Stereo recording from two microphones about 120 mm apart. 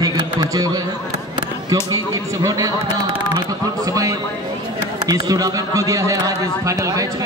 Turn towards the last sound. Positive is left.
turn(degrees=-30)  # may be behind; listen again after turning